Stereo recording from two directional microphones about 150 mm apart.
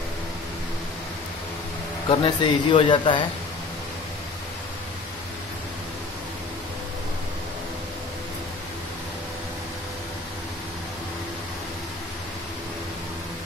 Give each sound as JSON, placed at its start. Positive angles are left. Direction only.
{"t": 2.0, "sound": "speech", "side_deg": 35}